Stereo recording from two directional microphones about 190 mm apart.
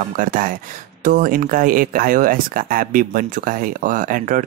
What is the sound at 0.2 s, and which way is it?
Speech, 45° right (ahead or behind).